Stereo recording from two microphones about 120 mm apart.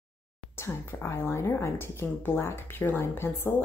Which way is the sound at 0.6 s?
20° left (ahead or behind).